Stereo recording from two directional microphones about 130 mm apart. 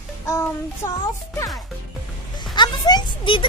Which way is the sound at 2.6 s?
35° left (ahead or behind).